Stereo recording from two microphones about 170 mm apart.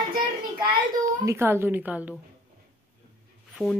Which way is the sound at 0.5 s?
25° right (ahead or behind).